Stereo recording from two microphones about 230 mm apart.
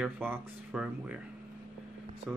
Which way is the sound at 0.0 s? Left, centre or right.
Centre.